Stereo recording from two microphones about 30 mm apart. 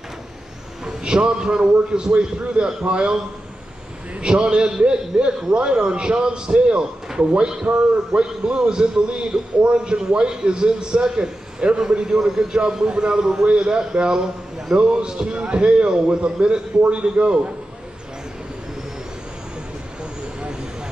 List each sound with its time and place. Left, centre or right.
0.8 s a man's voice: right
4.2 s a man's voice: right
14.8 s a man's voice: right